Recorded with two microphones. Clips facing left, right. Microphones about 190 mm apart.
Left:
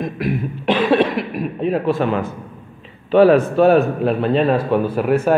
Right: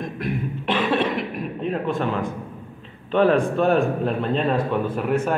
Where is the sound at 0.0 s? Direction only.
10° left (ahead or behind).